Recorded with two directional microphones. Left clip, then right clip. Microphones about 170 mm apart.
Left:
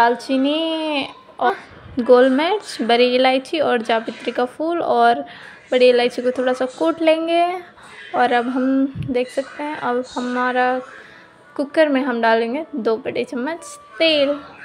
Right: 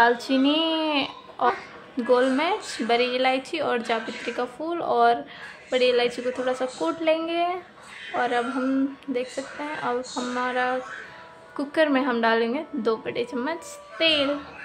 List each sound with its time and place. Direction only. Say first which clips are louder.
0.0 s speech: left 3 dB; 15° left (ahead or behind)
2.0 s a woman's voice: left 8 dB; 30° left (ahead or behind)